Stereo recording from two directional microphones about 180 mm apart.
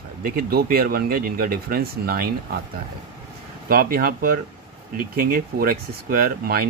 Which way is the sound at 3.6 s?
55° right (ahead or behind).